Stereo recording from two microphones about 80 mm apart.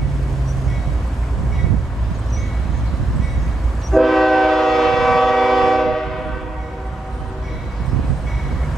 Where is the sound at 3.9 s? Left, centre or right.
Centre.